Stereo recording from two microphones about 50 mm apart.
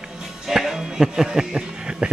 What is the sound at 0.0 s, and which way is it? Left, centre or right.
A man's voice, centre.